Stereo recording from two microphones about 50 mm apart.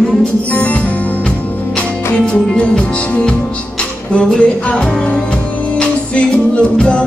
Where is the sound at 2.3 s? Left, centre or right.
Left.